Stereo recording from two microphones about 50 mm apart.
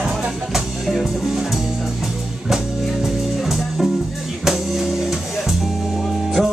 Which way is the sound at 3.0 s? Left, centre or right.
Centre.